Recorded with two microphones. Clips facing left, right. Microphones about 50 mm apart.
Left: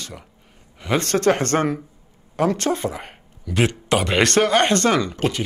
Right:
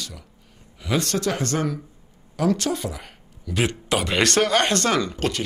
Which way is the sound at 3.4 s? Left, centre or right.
Centre.